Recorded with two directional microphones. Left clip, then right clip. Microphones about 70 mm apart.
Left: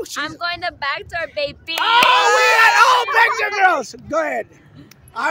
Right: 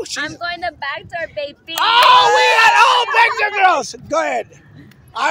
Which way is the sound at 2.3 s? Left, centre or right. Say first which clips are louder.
Right 1 dB; left.